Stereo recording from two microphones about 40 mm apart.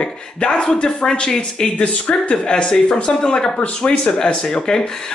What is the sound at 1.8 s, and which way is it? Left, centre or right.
Speech, left.